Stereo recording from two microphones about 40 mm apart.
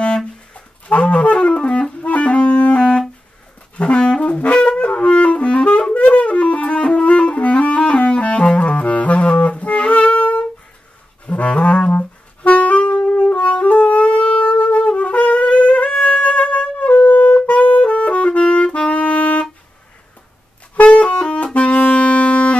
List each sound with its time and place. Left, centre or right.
0.6 s music: left
3.7 s saxophone: left
4.6 s wind instrument: left
11.2 s saxophone: left
17.1 s music: left
17.6 s saxophone: left
20.7 s music: left
21.5 s saxophone: left